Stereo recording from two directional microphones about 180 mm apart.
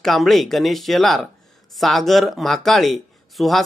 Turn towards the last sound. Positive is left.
turn(degrees=0)  # may be behind; listen again after turning